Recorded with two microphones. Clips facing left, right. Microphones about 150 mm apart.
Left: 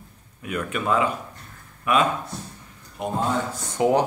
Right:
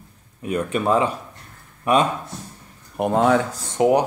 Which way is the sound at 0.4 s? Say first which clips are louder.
Right 5 dB; 35° right (ahead or behind).